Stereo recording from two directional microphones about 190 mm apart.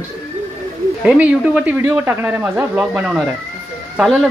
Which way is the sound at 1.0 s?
5° right (ahead or behind).